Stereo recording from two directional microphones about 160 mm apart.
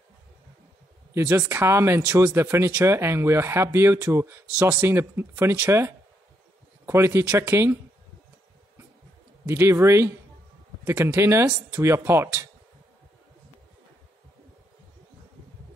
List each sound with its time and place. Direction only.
1.1 s speech: 15° right (ahead or behind)
9.5 s speech: 15° right (ahead or behind)